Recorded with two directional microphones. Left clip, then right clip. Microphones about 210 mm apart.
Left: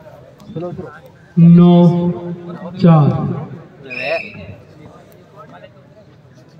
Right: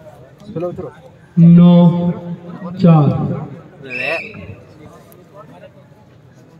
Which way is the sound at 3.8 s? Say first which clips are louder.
Even; 30° right (ahead or behind).